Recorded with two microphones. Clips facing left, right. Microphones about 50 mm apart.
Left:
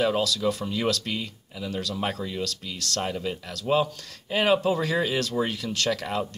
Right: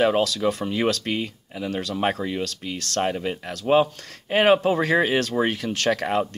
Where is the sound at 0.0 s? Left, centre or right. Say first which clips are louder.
Right 4 dB; right.